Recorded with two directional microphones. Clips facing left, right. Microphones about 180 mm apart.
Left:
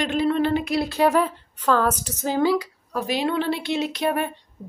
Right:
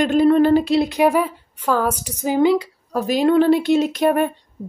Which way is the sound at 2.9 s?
45° right (ahead or behind).